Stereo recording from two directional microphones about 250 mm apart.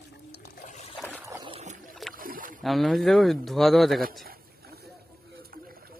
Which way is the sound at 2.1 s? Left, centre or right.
Right.